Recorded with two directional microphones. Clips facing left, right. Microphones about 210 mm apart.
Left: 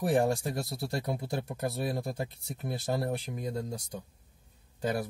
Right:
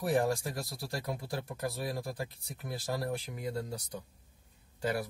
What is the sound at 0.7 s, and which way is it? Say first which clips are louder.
Speech: left 4 dB; 20° left (ahead or behind).